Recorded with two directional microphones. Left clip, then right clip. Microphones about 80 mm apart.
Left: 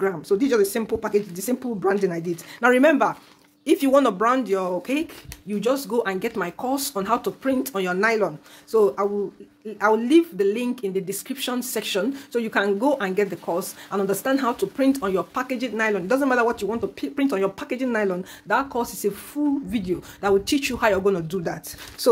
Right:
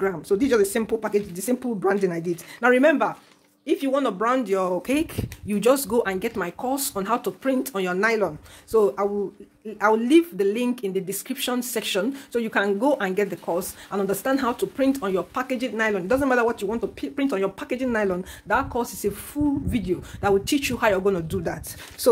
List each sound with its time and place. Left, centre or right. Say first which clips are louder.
0.0 s speech: left 1 dB; right
2.6 s speech: left 1 dB; centre
3.6 s speech: left 5 dB; left
4.5 s speech: right 1 dB; right
6.0 s speech: left 1 dB; centre
6.6 s speech: left 1 dB; centre
7.1 s speech: left 1 dB; centre